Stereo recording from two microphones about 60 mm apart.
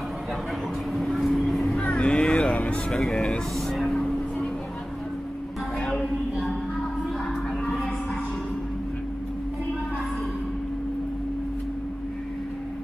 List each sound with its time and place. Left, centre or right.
0.9 s vehicle: centre
1.8 s vehicle: left
2.9 s speech: centre
3.6 s vehicle: centre
5.8 s music: left